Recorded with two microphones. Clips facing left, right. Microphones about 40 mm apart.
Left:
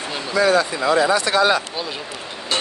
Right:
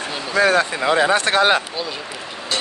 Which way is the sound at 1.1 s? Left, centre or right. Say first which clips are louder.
Right 1 dB; right.